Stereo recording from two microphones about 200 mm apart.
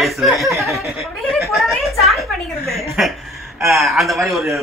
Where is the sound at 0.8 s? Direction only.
Centre (ahead or behind).